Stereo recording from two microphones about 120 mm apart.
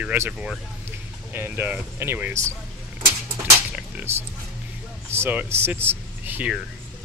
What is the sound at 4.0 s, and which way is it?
Speech, 15° right (ahead or behind).